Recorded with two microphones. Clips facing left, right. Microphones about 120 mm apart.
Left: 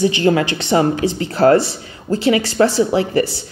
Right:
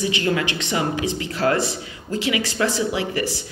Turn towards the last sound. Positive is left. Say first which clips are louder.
# left 8 dB
turn(degrees=35)  # may be behind; listen again after turning